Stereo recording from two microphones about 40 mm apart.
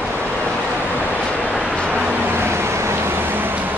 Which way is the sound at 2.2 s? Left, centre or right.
Right.